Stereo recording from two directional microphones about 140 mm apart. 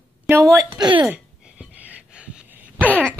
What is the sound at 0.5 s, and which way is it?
Speech, 25° right (ahead or behind).